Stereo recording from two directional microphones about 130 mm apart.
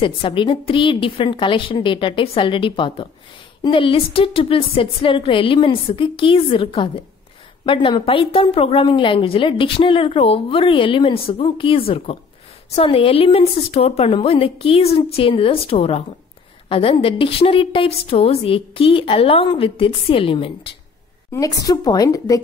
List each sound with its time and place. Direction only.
0.0 s a woman's voice: 40° left (ahead or behind)
21.3 s a woman's voice: 25° left (ahead or behind)